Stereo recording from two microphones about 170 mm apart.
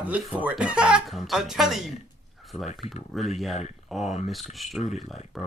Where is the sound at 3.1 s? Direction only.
Centre (ahead or behind).